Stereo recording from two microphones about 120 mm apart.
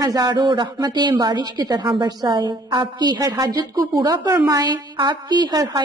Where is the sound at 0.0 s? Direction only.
35° right (ahead or behind).